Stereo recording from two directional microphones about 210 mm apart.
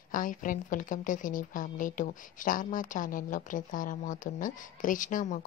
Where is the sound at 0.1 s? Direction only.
40° left (ahead or behind).